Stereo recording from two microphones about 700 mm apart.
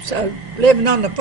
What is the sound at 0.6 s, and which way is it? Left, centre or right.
Speech, right.